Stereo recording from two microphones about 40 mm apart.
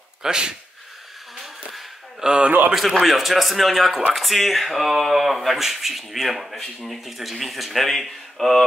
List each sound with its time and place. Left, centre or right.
0.2 s speech: right
1.7 s a sound: centre
2.2 s speech: right
2.7 s speech: centre